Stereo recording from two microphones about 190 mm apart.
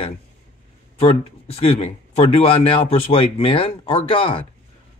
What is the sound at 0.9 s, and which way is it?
A man's voice, 30° left (ahead or behind).